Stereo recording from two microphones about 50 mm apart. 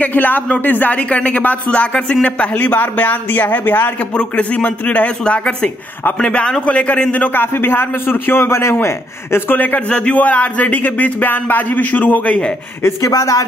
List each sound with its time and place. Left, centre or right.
0.0 s speech: left
4.0 s speech: left
7.3 s a man's voice: left
9.6 s speech: left
9.8 s speech: left
12.8 s speech: left